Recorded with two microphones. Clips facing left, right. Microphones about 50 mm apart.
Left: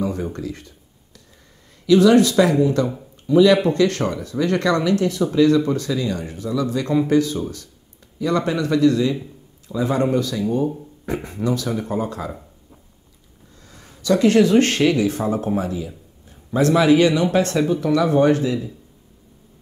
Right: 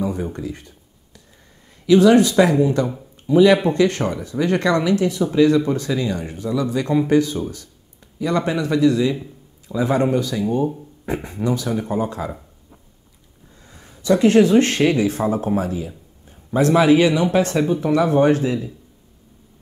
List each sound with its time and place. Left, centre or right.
0.0 s speech: centre
1.9 s speech: right
9.7 s a man's voice: right
10.0 s speech: right
13.7 s a sound: centre
14.0 s speech: right